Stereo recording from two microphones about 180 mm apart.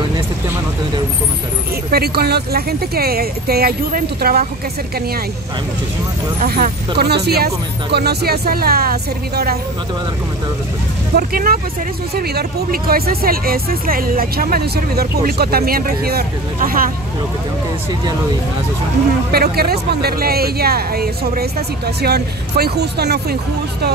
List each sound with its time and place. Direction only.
1.9 s speech: 60° right (ahead or behind)
6.4 s speech: 55° right (ahead or behind)
11.1 s speech: 55° right (ahead or behind)
19.3 s speech: 60° right (ahead or behind)